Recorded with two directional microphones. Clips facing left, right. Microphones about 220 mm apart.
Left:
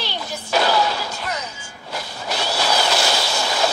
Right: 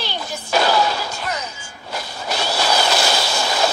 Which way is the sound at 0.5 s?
45° right (ahead or behind).